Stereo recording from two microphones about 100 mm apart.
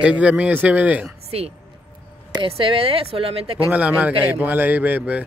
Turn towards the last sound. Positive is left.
turn(degrees=-15)  # may be behind; listen again after turning